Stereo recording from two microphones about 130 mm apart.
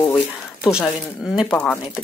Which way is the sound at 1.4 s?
10° left (ahead or behind).